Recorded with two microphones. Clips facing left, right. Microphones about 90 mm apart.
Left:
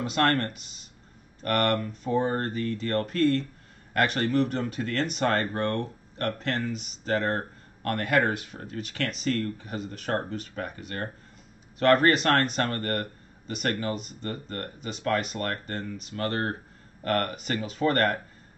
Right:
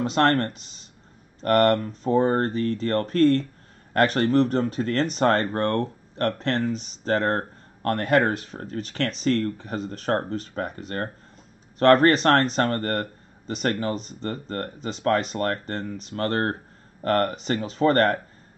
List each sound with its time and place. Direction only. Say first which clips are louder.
0.0 s speech: right 4 dB; 30° right (ahead or behind)